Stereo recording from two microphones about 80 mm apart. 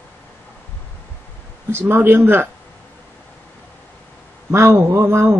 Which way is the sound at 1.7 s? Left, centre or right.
Right.